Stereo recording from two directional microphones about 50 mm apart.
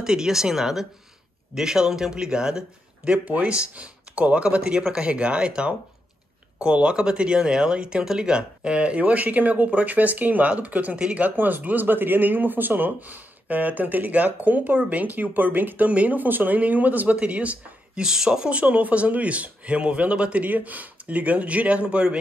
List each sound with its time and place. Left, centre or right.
0.0 s speech: centre; by 18.0 s right
18.0 s speech: centre